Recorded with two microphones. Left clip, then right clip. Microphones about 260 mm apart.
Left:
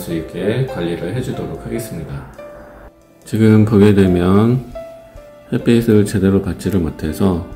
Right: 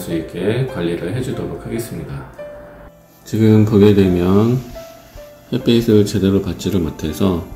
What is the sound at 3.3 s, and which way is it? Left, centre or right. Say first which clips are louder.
Speech: left 1 dB; centre.